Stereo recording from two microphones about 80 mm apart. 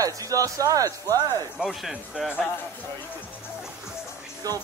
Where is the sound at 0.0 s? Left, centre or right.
Right.